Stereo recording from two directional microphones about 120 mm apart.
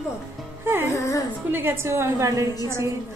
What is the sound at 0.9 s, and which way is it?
Speech, 25° left (ahead or behind).